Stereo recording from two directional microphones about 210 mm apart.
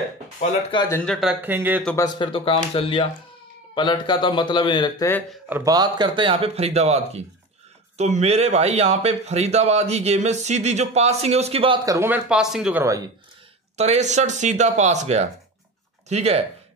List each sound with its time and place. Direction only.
0.4 s a man's voice: 25° left (ahead or behind)
0.8 s speech: 5° left (ahead or behind)
1.4 s speech: 10° right (ahead or behind)
2.1 s a man's voice: 25° left (ahead or behind)
5.7 s speech: 20° right (ahead or behind); by 12.8 s centre (ahead or behind)
13.7 s speech: 30° right (ahead or behind)